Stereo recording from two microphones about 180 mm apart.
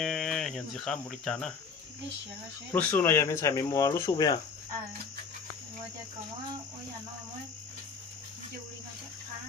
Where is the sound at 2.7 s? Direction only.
10° left (ahead or behind).